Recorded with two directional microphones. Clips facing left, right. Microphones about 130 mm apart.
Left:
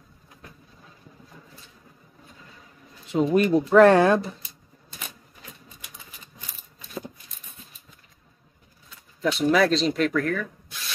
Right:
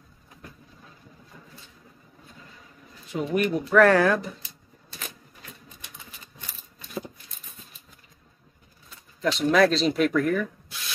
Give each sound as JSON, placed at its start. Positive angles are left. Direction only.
{"t": 3.1, "sound": "speech", "side_deg": 25}
{"t": 9.2, "sound": "speech", "side_deg": 5}